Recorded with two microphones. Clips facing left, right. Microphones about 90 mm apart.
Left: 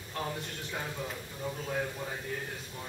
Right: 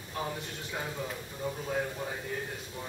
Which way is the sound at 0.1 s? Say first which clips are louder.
Right 1 dB; 10° right (ahead or behind).